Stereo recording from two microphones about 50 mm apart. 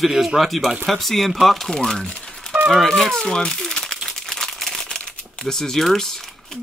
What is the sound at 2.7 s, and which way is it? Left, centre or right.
Crumpling, centre.